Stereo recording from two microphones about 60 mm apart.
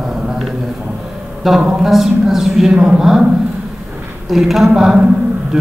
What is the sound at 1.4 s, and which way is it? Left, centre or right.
A woman's voice, centre.